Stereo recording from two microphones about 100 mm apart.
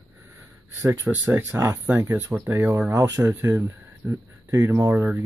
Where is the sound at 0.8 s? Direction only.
30° right (ahead or behind).